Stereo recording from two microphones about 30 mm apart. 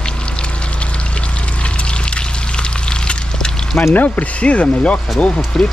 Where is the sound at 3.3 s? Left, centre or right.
Left.